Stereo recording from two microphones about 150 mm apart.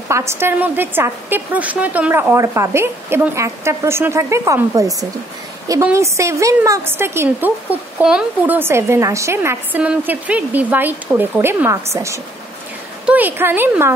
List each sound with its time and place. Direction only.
0.1 s a woman's voice: 20° right (ahead or behind)